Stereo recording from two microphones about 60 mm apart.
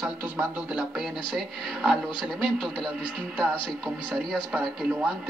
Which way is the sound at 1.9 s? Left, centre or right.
Centre.